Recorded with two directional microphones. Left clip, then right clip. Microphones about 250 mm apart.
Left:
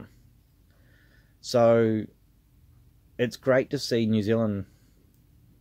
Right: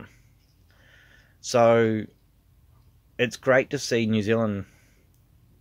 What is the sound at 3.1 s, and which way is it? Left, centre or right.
Speech, centre.